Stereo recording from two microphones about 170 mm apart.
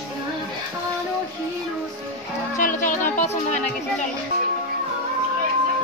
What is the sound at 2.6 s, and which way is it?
Music, 50° left (ahead or behind).